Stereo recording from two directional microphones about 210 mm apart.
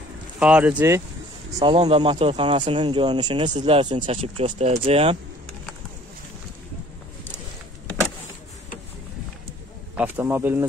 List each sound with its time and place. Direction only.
0.4 s speech: 5° right (ahead or behind)
1.6 s speech: 25° right (ahead or behind)
9.9 s speech: 10° right (ahead or behind)